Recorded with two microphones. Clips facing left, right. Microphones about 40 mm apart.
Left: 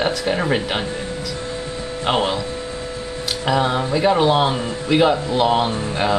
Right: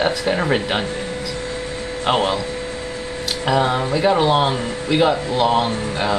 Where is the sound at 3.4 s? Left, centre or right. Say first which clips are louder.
Right 1 dB; centre.